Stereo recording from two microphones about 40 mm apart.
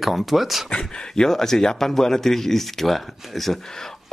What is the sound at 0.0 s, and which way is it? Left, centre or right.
Speech, centre.